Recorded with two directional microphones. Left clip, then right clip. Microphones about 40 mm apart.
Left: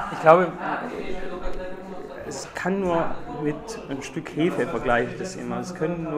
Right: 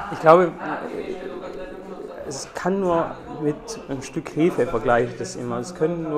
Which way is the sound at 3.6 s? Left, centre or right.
Right.